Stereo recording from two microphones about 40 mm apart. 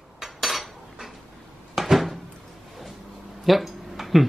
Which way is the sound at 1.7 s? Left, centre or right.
Centre.